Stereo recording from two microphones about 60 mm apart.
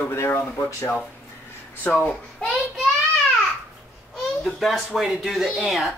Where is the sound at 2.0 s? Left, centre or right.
Centre.